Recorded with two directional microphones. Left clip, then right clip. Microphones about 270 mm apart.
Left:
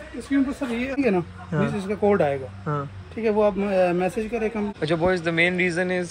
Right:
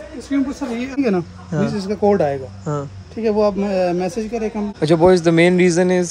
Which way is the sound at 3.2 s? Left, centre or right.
Right.